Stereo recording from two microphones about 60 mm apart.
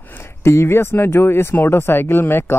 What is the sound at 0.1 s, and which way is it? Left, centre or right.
Speech, left.